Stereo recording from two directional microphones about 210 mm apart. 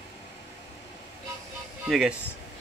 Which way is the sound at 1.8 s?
Centre (ahead or behind).